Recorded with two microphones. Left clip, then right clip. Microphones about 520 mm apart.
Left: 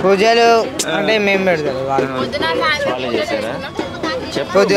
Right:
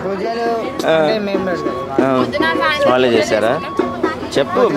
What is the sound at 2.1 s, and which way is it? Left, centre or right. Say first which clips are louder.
Speech: right 3 dB; centre.